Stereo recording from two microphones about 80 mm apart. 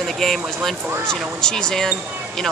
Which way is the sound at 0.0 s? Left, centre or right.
Centre.